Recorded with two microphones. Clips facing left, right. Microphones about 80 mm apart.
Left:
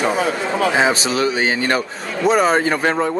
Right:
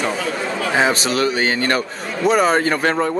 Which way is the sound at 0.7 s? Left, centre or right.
Centre.